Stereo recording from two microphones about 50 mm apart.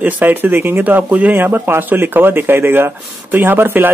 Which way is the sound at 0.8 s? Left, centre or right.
Right.